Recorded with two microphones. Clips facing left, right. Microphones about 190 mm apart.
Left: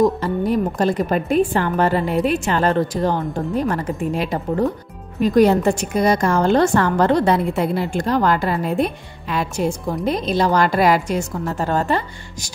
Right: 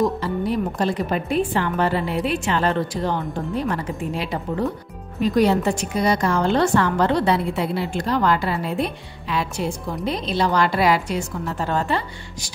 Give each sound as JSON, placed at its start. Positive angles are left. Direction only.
{"t": 0.0, "sound": "speech", "side_deg": 45}